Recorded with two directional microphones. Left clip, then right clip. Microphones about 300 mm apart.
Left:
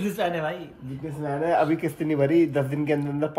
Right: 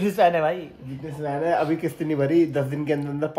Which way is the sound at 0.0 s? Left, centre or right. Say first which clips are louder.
Right 7 dB; right.